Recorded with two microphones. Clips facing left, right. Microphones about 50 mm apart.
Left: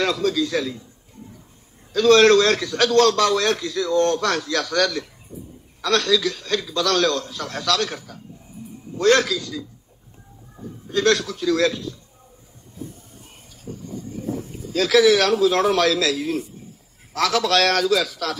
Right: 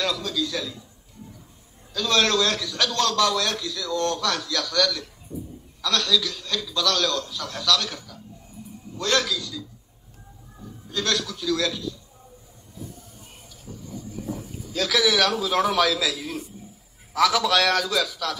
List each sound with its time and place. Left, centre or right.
0.0 s a man's voice: left
2.0 s a man's voice: left
13.7 s a sound: left
14.2 s a sound: centre
14.8 s a man's voice: left
15.3 s a man's voice: centre
15.7 s a man's voice: left
17.3 s a man's voice: left